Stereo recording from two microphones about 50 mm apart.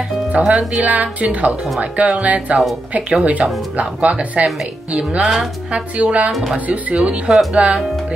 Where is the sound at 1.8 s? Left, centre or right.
Right.